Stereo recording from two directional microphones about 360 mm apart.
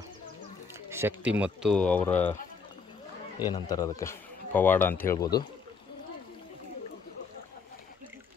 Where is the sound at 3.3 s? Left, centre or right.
Centre.